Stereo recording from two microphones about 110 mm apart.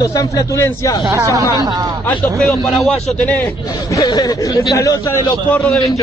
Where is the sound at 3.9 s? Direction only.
30° left (ahead or behind).